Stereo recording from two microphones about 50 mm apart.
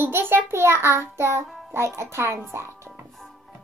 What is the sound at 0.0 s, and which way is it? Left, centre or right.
Child singing, right.